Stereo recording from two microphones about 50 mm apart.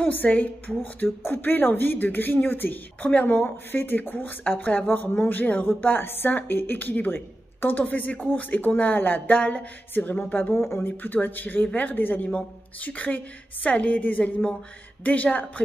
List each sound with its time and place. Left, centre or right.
0.0 s a woman's voice: left
1.0 s a woman's voice: left
3.7 s a woman's voice: left
9.4 s a sound: left
9.9 s a woman's voice: left
10.5 s speech: left
11.0 s a woman's voice: left
12.3 s a woman's voice: left